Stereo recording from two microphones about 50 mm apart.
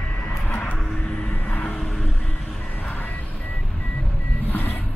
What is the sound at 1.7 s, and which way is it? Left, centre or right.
Vehicle, centre.